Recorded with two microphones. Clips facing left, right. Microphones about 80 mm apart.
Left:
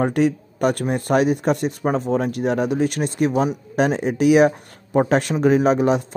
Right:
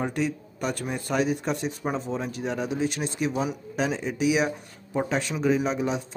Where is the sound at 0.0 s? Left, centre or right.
Left.